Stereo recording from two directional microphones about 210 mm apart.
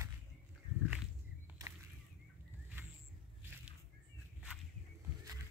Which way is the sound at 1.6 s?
15° right (ahead or behind).